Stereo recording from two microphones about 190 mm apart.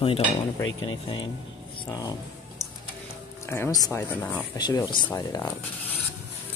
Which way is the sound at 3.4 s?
15° left (ahead or behind).